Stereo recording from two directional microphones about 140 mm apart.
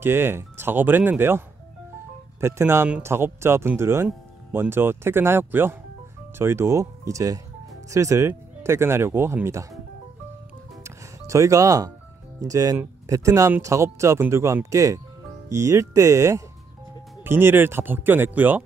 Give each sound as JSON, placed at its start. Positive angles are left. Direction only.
{"t": 0.0, "sound": "speech", "side_deg": -15}
{"t": 2.4, "sound": "speech", "side_deg": -20}
{"t": 10.8, "sound": "music", "side_deg": -20}
{"t": 12.4, "sound": "speech", "side_deg": -25}